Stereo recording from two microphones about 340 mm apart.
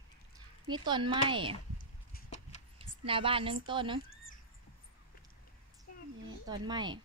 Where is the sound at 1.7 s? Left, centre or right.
Left.